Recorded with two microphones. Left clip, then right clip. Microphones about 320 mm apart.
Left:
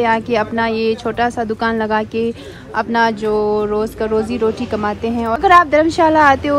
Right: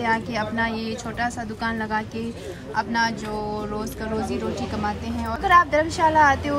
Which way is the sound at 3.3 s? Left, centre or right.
Centre.